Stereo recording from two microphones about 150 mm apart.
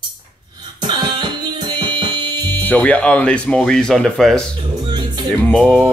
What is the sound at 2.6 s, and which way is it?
Speech, 10° left (ahead or behind).